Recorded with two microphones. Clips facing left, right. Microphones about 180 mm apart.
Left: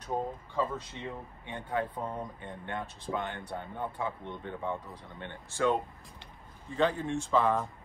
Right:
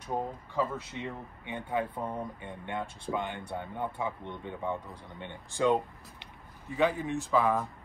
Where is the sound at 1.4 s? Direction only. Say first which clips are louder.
Right 1 dB; 15° right (ahead or behind).